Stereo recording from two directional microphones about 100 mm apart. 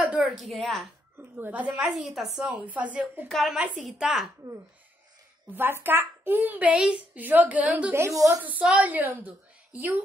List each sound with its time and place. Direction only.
0.0 s a sound: 10° right (ahead or behind)
0.4 s a woman's voice: centre (ahead or behind)
1.1 s a child's voice: 15° right (ahead or behind)
3.3 s a woman's voice: centre (ahead or behind)
5.5 s a child's voice: 20° right (ahead or behind)
7.9 s a woman's voice: 30° right (ahead or behind)
8.5 s a child's voice: 15° right (ahead or behind)